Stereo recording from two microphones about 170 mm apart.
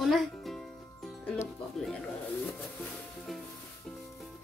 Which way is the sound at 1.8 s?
Centre (ahead or behind).